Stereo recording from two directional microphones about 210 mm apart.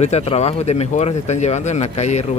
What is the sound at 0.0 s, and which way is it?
Speech, 30° left (ahead or behind).